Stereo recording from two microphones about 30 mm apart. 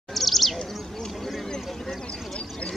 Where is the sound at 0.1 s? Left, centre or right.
Centre.